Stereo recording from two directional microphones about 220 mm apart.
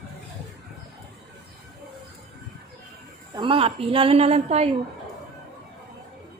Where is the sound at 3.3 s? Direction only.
25° right (ahead or behind).